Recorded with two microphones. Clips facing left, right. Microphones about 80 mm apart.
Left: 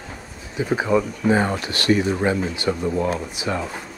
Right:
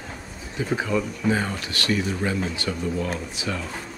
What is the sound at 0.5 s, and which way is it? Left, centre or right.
Speech, centre.